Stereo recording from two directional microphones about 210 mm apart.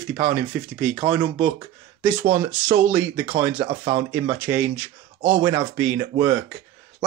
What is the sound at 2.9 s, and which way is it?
Speech, 10° right (ahead or behind).